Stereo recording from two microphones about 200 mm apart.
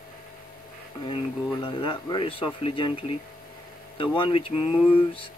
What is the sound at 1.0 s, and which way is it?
Speech, 25° left (ahead or behind).